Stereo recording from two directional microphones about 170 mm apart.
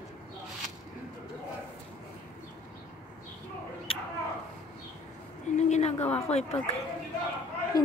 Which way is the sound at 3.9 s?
35° left (ahead or behind).